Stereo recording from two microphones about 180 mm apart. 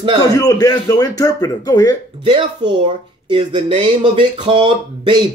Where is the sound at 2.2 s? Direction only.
25° right (ahead or behind).